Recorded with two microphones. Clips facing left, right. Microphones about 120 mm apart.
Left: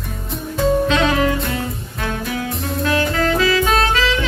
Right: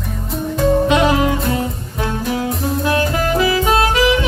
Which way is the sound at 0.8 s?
15° right (ahead or behind).